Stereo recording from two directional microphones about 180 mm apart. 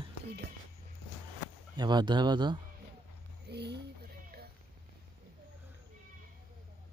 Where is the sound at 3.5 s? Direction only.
65° right (ahead or behind).